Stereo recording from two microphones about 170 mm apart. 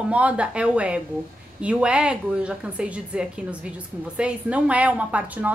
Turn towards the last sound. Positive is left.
turn(degrees=-10)  # may be behind; listen again after turning